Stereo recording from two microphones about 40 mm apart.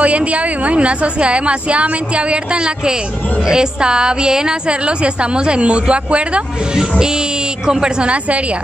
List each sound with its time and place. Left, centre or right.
0.0 s a woman's voice: right